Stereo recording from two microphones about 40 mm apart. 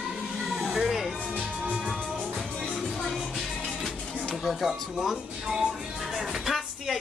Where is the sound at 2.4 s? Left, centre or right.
Centre.